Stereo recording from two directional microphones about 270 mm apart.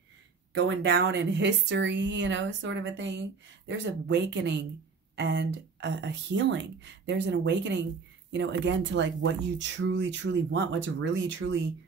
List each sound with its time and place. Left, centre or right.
0.6 s speech: right